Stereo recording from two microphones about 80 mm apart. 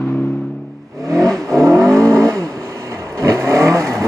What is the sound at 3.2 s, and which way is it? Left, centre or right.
Vehicle, right.